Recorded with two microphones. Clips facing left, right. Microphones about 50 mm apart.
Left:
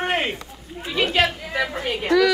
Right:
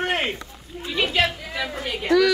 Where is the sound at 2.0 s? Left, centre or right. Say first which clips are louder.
Even; centre.